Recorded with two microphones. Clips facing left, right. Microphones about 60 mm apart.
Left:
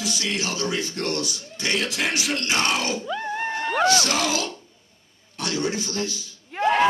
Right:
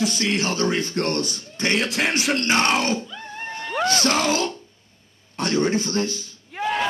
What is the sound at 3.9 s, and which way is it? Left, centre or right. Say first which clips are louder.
Speech: right 1 dB; right.